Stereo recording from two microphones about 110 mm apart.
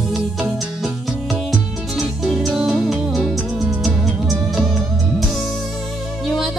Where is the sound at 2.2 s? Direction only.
5° right (ahead or behind).